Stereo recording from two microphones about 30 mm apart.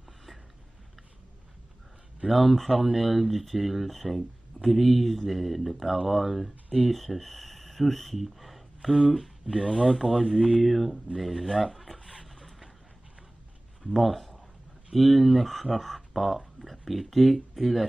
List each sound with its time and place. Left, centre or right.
2.2 s speech: centre
9.5 s speech: right
10.0 s speech: right
10.6 s speech: centre
12.3 s boat: centre
13.9 s speech: centre